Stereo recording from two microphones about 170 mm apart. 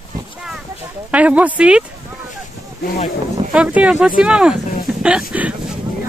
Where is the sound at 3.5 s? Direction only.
5° right (ahead or behind).